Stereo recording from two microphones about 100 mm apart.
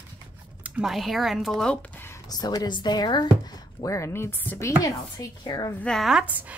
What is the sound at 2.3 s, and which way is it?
Speech, 40° left (ahead or behind).